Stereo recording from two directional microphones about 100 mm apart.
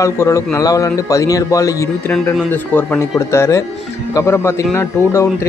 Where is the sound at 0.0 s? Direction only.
25° left (ahead or behind).